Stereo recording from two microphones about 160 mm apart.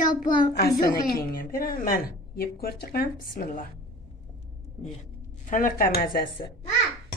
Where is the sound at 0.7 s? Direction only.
20° left (ahead or behind).